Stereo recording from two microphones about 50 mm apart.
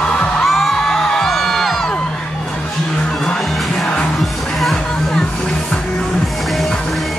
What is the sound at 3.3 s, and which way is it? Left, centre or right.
Music, centre.